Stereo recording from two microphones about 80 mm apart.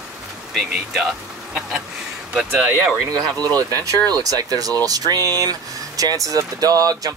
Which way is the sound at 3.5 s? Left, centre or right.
Right.